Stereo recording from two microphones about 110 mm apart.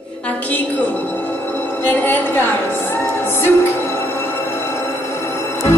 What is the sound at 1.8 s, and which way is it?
Speech, 20° left (ahead or behind).